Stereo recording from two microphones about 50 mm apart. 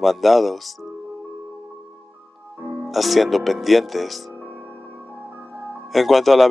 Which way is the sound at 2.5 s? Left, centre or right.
Right.